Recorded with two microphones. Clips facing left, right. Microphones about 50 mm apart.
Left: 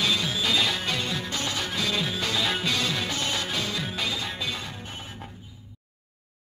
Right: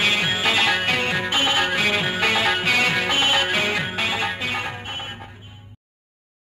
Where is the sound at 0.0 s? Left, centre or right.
Right.